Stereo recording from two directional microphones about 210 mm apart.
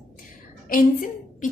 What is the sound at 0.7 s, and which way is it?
Speech, 40° left (ahead or behind).